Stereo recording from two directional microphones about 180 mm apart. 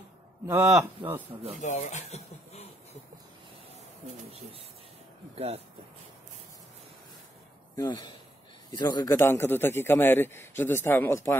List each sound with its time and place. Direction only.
0.5 s speech: 15° right (ahead or behind)
1.6 s speech: 40° left (ahead or behind)
4.0 s speech: 35° right (ahead or behind)
7.7 s a man's voice: 20° left (ahead or behind)